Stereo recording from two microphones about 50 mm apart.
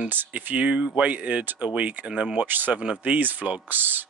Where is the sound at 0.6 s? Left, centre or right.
Right.